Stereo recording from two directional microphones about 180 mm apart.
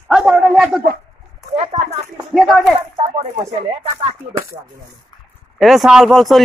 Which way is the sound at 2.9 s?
35° right (ahead or behind).